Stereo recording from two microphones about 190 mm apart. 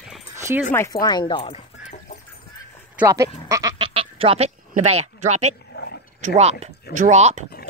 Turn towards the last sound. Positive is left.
turn(degrees=-35)  # may be behind; listen again after turning